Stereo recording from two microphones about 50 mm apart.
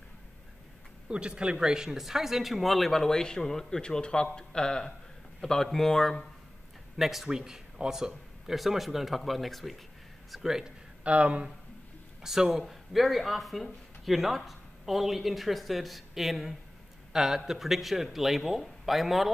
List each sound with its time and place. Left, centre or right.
1.0 s speech: centre
7.2 s speech: centre
11.1 s speech: right
12.2 s speech: centre